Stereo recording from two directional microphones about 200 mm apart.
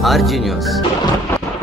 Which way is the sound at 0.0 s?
Centre (ahead or behind).